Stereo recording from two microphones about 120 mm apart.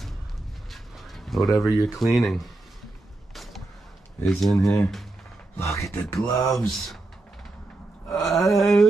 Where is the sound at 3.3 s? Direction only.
Centre (ahead or behind).